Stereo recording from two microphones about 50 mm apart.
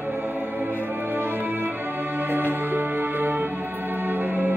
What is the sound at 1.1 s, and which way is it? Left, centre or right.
Music, right.